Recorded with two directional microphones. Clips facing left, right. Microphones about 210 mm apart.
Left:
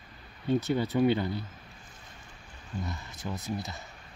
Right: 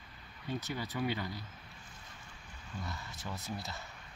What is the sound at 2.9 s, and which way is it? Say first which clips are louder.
Speech: left 6 dB; 15° left (ahead or behind).